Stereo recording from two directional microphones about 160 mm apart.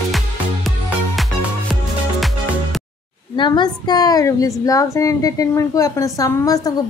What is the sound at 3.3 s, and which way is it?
A woman's voice, 30° left (ahead or behind).